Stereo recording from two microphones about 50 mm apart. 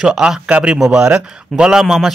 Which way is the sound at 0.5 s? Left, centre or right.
Right.